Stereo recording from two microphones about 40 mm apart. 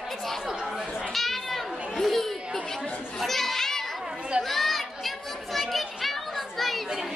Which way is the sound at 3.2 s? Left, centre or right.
Centre.